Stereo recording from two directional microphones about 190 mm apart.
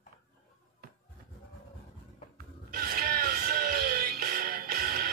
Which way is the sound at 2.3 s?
50° right (ahead or behind).